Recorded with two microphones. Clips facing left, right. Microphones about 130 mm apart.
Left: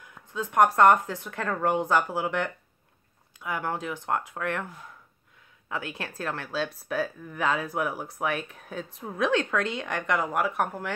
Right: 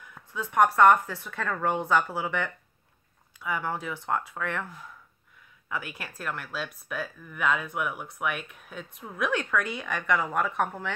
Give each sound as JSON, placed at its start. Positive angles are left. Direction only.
{"t": 0.3, "sound": "speech", "side_deg": 15}
{"t": 5.7, "sound": "speech", "side_deg": 25}